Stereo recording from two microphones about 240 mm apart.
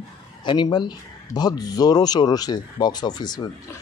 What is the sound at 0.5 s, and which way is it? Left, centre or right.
Speech, centre.